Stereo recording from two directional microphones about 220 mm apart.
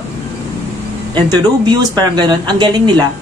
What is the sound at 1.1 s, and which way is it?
Speech, 20° right (ahead or behind).